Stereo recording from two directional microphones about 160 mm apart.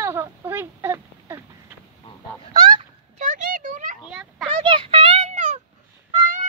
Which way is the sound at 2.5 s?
25° right (ahead or behind).